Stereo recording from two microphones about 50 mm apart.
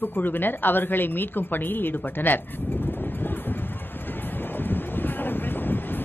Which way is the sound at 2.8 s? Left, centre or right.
Left.